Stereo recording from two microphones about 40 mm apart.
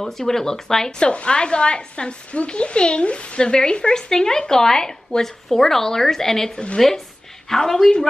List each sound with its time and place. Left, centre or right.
0.0 s speech: centre
1.0 s a woman's voice: left